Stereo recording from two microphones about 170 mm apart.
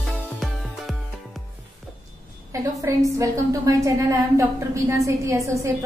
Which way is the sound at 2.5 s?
20° right (ahead or behind).